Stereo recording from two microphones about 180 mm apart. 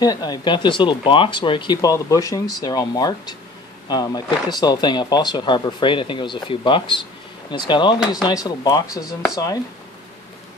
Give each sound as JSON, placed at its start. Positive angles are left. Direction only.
{"t": 0.0, "sound": "speech", "side_deg": 20}